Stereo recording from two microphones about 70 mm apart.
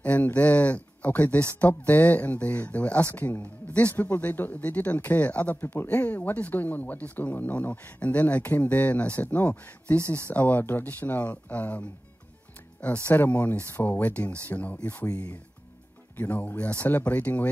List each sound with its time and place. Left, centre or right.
0.0 s speech: left
13.0 s speech: left
16.2 s speech: left